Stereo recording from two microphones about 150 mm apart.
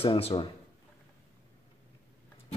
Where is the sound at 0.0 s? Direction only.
40° left (ahead or behind).